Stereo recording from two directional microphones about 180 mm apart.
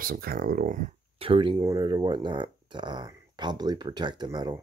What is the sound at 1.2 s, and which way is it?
Speech, 30° right (ahead or behind).